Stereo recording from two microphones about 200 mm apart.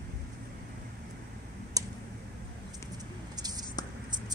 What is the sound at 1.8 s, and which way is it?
Tick, 20° right (ahead or behind).